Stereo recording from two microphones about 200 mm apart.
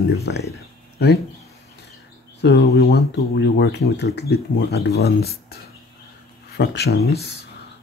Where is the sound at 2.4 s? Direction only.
55° left (ahead or behind).